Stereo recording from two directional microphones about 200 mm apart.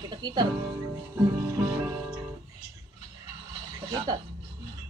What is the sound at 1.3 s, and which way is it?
Music, 10° right (ahead or behind).